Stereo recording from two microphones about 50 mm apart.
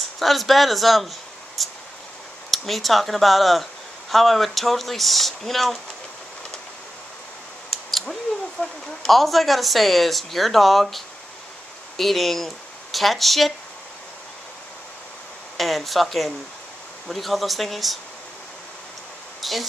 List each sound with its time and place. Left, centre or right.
0.2 s speech: centre
1.6 s a sound: centre
2.5 s speech: centre
8.1 s speech: centre
15.5 s speech: centre
19.4 s speech: centre